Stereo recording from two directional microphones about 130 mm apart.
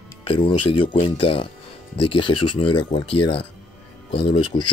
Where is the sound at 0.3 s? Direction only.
40° left (ahead or behind).